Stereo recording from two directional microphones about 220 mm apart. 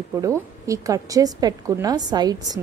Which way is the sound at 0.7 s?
15° right (ahead or behind).